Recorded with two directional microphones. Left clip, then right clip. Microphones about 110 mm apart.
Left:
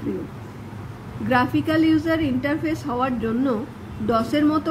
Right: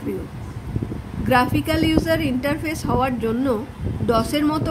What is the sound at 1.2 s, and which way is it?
Speech, 35° right (ahead or behind).